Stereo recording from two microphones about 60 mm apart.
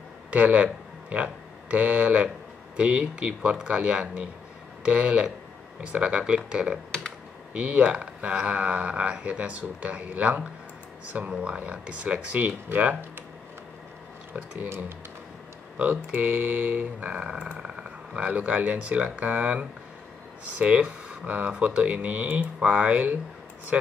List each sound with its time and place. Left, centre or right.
0.3 s speech: right
12.6 s speech: right
15.8 s speech: right